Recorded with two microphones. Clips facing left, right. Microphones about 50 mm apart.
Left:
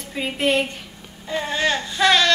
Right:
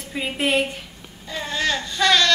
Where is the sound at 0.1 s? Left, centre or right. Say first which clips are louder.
Left 1 dB; centre.